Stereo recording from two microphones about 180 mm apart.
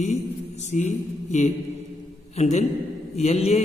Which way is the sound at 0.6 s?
40° left (ahead or behind).